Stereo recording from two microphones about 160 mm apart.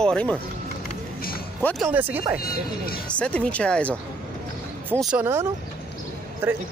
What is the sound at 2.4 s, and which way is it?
Speech, 70° left (ahead or behind).